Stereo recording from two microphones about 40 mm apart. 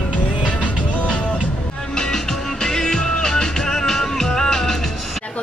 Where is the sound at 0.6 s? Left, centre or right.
Left.